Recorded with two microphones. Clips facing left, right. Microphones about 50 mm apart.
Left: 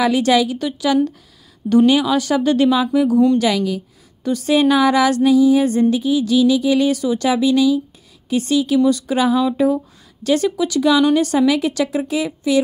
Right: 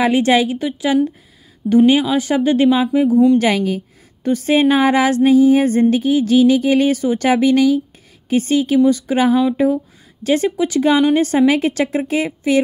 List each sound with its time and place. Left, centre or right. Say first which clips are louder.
0.0 s a woman's voice: right 1 dB; right
3.3 s a woman's voice: right 2 dB; right